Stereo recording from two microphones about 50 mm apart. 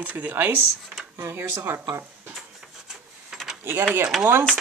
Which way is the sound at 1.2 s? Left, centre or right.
Right.